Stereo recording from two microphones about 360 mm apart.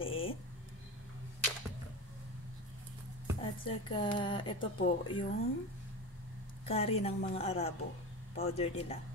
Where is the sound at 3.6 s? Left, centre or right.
Centre.